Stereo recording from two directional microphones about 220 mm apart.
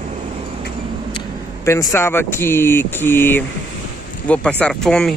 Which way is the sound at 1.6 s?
10° left (ahead or behind).